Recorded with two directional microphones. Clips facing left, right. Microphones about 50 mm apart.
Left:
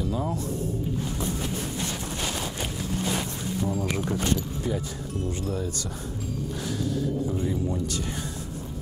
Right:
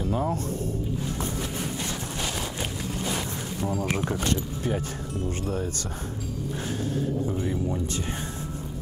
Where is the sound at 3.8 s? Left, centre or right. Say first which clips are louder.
Right 1 dB; right.